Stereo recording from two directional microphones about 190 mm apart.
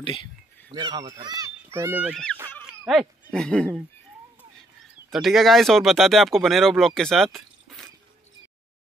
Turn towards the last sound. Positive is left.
turn(degrees=0)  # may be behind; listen again after turning